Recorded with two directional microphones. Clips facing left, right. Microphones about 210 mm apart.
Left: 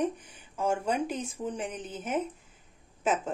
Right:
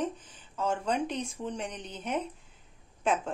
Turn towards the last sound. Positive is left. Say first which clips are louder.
# even
turn(degrees=5)  # may be behind; listen again after turning